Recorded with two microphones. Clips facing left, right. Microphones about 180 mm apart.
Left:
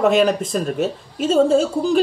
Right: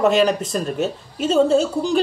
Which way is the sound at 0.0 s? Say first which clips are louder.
Left 1 dB; centre (ahead or behind).